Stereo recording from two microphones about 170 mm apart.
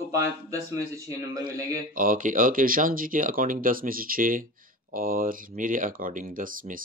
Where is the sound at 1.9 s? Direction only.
55° right (ahead or behind).